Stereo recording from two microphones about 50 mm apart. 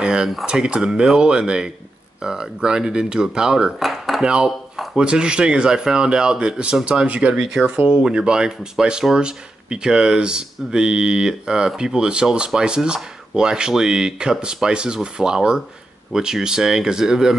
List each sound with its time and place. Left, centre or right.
0.0 s a sound: centre
0.5 s speech: centre
3.8 s dishes: centre
4.2 s speech: centre